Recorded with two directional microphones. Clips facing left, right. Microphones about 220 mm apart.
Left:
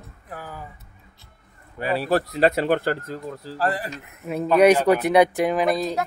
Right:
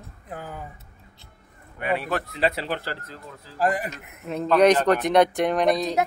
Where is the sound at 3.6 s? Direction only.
15° right (ahead or behind).